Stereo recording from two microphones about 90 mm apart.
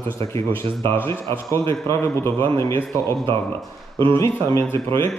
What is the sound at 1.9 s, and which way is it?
Speech, 30° left (ahead or behind).